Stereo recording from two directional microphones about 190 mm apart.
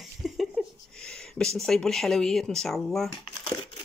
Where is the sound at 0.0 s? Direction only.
Centre (ahead or behind).